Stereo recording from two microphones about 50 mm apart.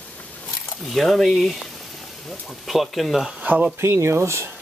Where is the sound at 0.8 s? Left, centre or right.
Centre.